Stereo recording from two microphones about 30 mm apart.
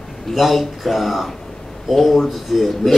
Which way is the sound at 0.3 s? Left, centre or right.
Centre.